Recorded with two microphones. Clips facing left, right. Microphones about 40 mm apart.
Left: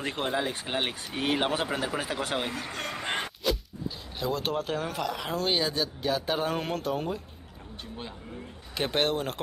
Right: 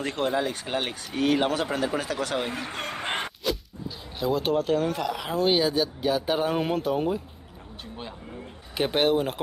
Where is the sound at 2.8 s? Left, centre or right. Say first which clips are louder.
Right 1 dB; right.